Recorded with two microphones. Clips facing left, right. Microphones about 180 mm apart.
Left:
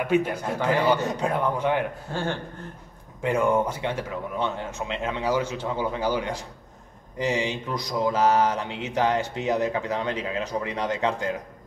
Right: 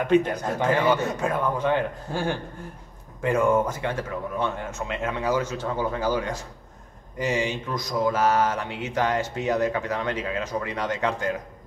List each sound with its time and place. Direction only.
0.0 s mantra: 5° left (ahead or behind)
2.1 s speech: 15° right (ahead or behind)
3.2 s mantra: 15° left (ahead or behind)